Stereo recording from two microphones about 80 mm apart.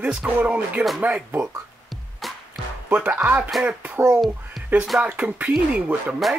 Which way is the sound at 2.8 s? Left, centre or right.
Right.